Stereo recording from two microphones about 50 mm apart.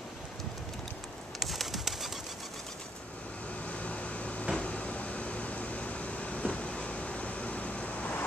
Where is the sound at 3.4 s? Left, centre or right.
Left.